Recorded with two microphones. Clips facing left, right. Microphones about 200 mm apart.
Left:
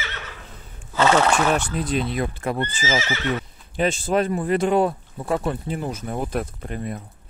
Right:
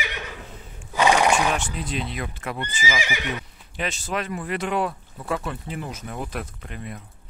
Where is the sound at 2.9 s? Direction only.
15° right (ahead or behind).